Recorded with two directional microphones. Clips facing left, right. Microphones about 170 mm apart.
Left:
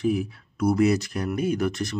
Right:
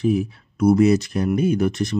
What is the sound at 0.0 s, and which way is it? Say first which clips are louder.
Speech: right 4 dB; 25° right (ahead or behind).